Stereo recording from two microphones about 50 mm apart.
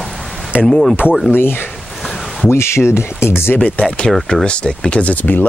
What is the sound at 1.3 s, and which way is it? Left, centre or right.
Speech, left.